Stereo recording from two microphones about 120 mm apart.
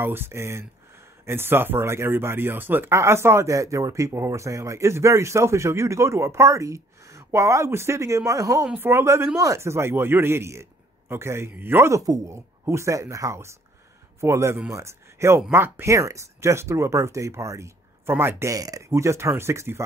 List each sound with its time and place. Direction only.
0.0 s speech: 20° right (ahead or behind)